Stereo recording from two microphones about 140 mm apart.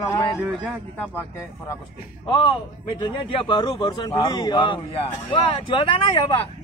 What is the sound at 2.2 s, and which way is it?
Speech, 35° left (ahead or behind).